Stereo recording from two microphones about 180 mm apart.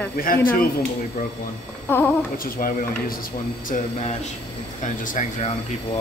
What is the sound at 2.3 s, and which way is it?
Speech, 55° left (ahead or behind).